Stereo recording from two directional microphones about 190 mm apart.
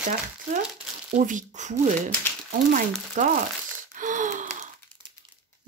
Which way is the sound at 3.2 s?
40° right (ahead or behind).